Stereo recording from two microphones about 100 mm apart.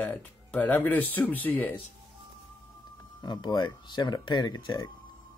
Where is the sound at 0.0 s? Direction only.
15° left (ahead or behind).